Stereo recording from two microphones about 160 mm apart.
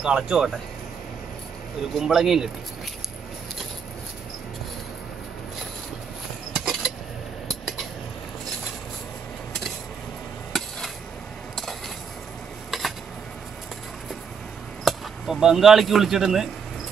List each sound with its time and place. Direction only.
0.0 s speech: 5° right (ahead or behind)
2.0 s speech: centre (ahead or behind)
6.5 s a sound: 5° right (ahead or behind)
7.4 s cutlery: centre (ahead or behind)
12.7 s a sound: centre (ahead or behind)
14.9 s speech: centre (ahead or behind)